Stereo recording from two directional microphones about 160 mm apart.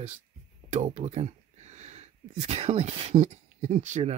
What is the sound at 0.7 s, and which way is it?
Speech, 45° right (ahead or behind).